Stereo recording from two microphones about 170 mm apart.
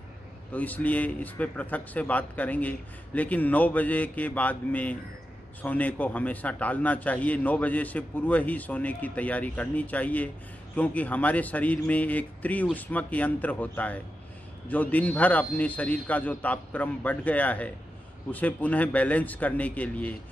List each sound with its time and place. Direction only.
0.5 s a man's voice: 10° left (ahead or behind)